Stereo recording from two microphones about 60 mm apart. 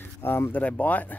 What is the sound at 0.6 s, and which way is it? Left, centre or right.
Speech, left.